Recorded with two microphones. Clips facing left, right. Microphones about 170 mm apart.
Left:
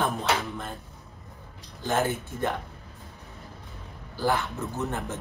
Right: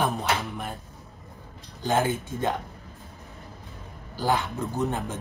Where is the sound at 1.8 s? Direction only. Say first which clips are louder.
Right 2 dB; 15° right (ahead or behind).